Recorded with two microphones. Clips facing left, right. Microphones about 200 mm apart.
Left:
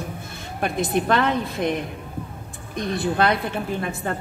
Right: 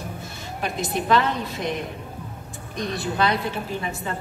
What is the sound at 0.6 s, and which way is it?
A woman's voice, 55° left (ahead or behind).